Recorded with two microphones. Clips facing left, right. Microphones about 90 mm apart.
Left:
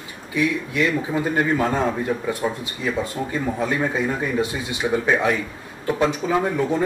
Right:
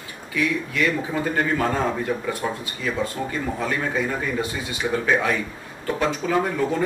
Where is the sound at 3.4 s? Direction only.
15° left (ahead or behind).